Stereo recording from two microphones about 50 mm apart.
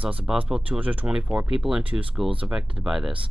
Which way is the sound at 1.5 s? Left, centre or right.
Centre.